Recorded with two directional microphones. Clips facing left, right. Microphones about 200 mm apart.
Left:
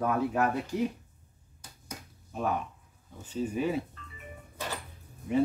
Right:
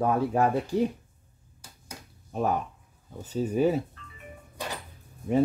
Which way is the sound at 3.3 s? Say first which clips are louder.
Right 5 dB; 40° right (ahead or behind).